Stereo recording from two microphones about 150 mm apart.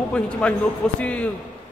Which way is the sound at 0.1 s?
10° left (ahead or behind).